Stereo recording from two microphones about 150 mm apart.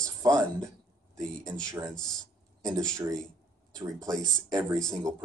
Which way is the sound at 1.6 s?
25° right (ahead or behind).